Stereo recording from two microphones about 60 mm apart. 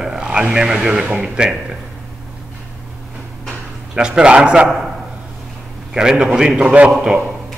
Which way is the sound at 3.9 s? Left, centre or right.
Centre.